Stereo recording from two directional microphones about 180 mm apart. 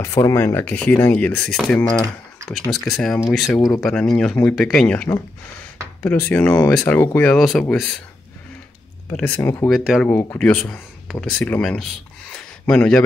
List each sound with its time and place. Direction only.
0.0 s speech: 15° left (ahead or behind)
9.1 s speech: 10° left (ahead or behind)
9.7 s speech: centre (ahead or behind)
10.0 s speech: 10° left (ahead or behind)
12.4 s a sound: 5° left (ahead or behind)